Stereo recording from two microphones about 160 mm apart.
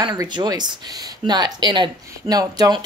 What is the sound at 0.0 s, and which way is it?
Speech, 25° right (ahead or behind).